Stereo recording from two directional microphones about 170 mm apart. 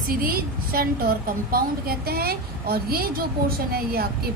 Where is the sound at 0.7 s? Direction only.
60° right (ahead or behind).